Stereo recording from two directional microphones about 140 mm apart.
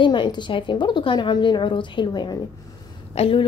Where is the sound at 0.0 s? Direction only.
35° left (ahead or behind).